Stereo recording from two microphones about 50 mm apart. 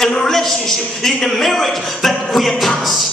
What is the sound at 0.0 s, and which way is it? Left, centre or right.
A man's voice, centre.